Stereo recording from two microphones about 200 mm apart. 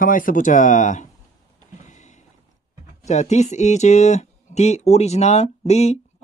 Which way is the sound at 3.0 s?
35° left (ahead or behind).